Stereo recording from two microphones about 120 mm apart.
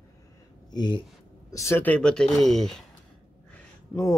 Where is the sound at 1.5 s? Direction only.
25° left (ahead or behind).